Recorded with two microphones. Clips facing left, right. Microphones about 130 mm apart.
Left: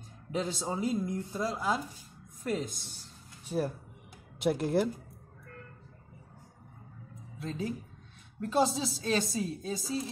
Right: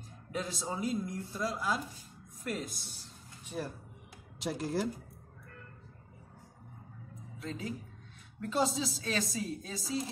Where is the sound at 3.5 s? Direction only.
40° left (ahead or behind).